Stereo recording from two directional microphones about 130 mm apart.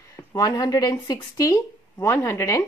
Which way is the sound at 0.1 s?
25° left (ahead or behind).